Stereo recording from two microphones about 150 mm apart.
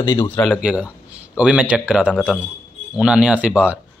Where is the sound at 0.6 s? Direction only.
5° right (ahead or behind).